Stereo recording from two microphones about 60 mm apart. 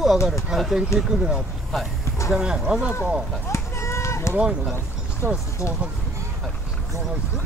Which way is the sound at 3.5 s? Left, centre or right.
Left.